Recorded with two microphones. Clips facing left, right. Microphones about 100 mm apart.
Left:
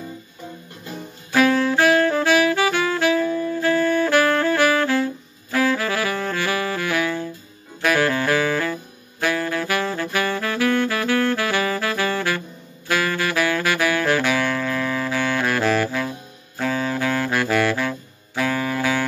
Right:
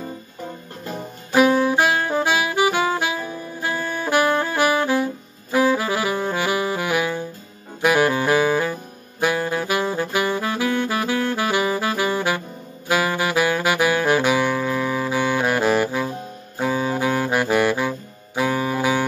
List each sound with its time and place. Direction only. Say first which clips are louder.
1.3 s saxophone: right 1 dB; 20° right (ahead or behind)
7.8 s music: right 2 dB; 20° right (ahead or behind)
9.2 s saxophone: right 1 dB; 20° right (ahead or behind)